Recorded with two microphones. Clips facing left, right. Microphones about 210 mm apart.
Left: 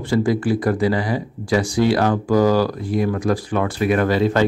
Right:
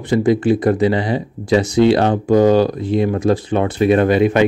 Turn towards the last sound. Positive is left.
turn(degrees=-20)  # may be behind; listen again after turning